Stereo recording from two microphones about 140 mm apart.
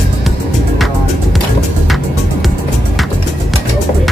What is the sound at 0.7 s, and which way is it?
Music, centre (ahead or behind).